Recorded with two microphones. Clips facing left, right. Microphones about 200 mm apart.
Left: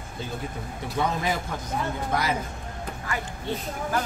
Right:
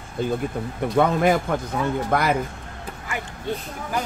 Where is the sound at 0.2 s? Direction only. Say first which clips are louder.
Right 10 dB; 55° right (ahead or behind).